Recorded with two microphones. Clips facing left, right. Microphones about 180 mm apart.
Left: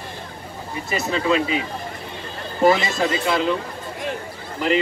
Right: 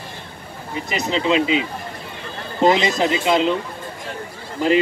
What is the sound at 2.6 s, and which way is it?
Speech, 20° right (ahead or behind).